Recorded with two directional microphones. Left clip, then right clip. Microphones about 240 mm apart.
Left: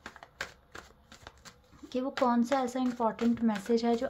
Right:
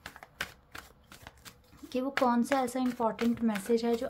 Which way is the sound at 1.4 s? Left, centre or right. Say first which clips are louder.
Right 1 dB; centre.